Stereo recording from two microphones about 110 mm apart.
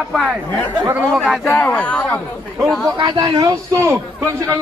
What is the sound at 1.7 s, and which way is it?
Speech, 10° left (ahead or behind).